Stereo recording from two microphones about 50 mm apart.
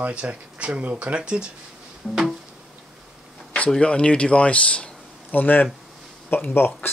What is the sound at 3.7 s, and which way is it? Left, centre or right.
Speech, left.